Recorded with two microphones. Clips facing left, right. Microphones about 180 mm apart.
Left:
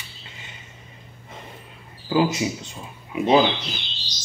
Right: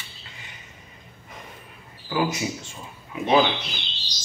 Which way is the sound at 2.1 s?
25° left (ahead or behind).